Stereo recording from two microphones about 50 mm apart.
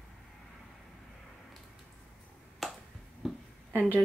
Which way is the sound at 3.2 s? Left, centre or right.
Centre.